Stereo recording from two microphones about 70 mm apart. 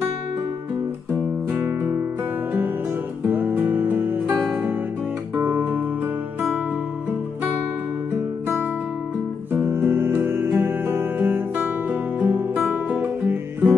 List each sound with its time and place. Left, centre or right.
3.3 s music: right
9.5 s music: right